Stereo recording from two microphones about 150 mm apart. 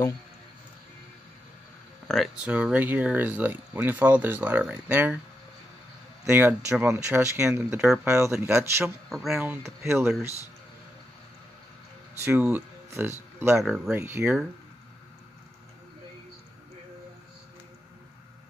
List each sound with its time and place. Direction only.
2.0 s speech: 5° right (ahead or behind)
6.2 s speech: 10° right (ahead or behind)
8.8 s speech: centre (ahead or behind)
9.6 s speech: 15° right (ahead or behind)
12.3 s speech: 10° right (ahead or behind)